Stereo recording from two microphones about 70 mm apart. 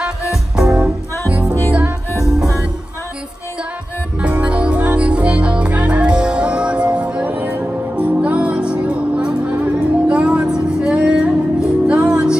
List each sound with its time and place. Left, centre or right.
0.6 s music: centre
4.2 s music: centre